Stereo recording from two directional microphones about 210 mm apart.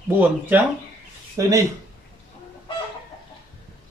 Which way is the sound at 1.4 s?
15° right (ahead or behind).